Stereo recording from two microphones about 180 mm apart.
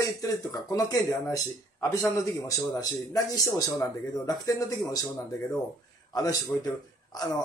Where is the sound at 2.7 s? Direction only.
20° left (ahead or behind).